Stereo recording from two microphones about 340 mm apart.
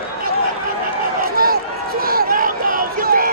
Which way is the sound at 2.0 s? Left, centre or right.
Right.